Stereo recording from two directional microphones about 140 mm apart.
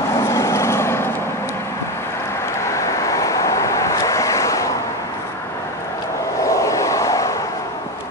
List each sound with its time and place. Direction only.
0.2 s vehicle: 20° left (ahead or behind)
2.7 s vehicle: 20° left (ahead or behind)
6.4 s a sound: 20° left (ahead or behind)